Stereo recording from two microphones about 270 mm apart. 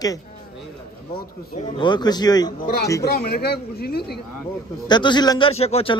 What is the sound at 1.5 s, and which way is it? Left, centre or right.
Speech, centre.